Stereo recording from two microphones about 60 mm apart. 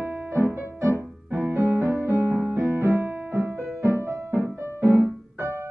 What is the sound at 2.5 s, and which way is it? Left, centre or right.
Keyboard, right.